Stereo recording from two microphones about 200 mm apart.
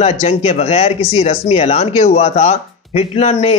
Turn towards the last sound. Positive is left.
turn(degrees=30)  # may be behind; listen again after turning